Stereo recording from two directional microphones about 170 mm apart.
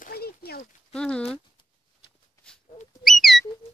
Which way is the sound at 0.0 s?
65° left (ahead or behind).